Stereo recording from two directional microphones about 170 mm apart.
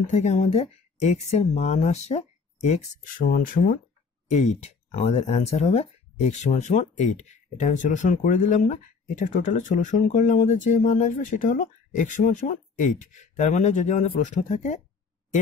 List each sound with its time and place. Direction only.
0.1 s speech: 40° left (ahead or behind)
4.3 s speech: 40° left (ahead or behind)